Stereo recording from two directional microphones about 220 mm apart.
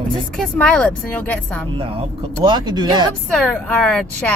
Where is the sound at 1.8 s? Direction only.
25° right (ahead or behind).